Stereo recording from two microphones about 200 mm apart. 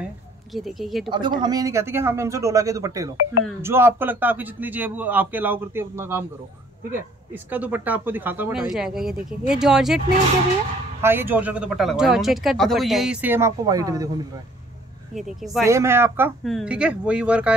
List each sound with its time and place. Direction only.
0.0 s a sound: centre (ahead or behind)
1.0 s a man's voice: 25° right (ahead or behind)
7.5 s speech: 10° right (ahead or behind)
11.0 s speech: 10° right (ahead or behind)
15.1 s speech: centre (ahead or behind)
15.6 s a man's voice: 15° right (ahead or behind)
16.4 s speech: centre (ahead or behind)